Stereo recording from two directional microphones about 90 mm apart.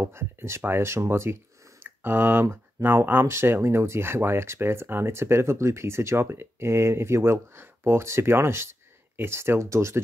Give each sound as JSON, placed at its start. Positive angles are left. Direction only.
{"t": 0.0, "sound": "speech", "side_deg": -30}